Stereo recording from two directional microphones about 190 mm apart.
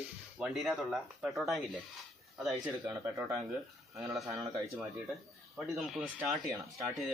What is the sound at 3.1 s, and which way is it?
Speech, 15° right (ahead or behind).